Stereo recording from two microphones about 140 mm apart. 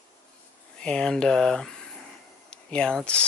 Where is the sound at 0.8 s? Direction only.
5° left (ahead or behind).